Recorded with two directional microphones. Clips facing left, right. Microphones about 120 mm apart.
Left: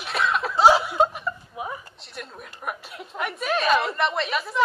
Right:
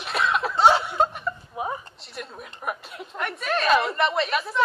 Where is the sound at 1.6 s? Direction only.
30° right (ahead or behind).